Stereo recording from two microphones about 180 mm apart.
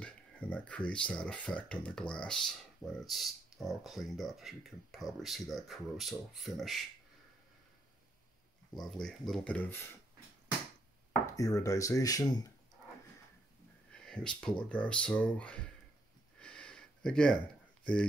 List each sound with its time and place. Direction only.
0.0 s speech: 5° left (ahead or behind)
8.7 s speech: 5° left (ahead or behind)
11.3 s speech: 20° left (ahead or behind)
13.9 s speech: 5° left (ahead or behind)
16.3 s a sound: 5° left (ahead or behind)